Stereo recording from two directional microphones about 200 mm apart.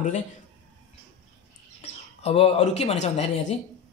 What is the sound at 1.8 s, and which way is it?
A man's voice, 30° left (ahead or behind).